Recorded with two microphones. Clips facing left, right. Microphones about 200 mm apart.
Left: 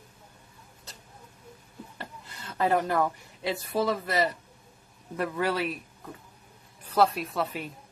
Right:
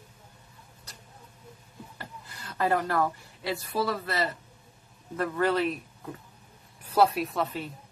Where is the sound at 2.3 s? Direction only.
25° left (ahead or behind); by 5.8 s 10° left (ahead or behind).